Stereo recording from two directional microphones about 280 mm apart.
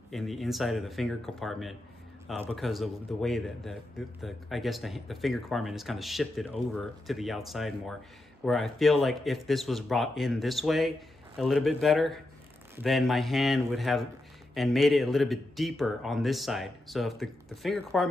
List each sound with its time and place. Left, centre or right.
0.1 s a man's voice: centre